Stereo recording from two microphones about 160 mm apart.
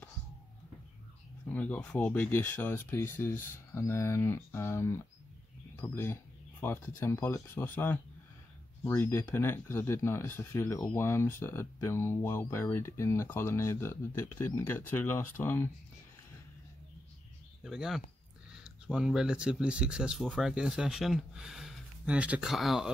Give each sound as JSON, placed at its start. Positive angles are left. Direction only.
{"t": 1.5, "sound": "speech", "side_deg": 10}
{"t": 17.6, "sound": "speech", "side_deg": 0}